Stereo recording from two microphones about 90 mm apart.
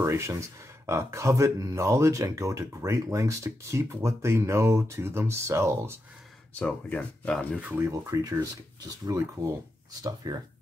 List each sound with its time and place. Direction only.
0.0 s speech: 35° right (ahead or behind)
6.6 s speech: 15° left (ahead or behind)
7.6 s speech: 20° right (ahead or behind)
7.9 s speech: 35° right (ahead or behind)
10.2 s speech: 45° right (ahead or behind)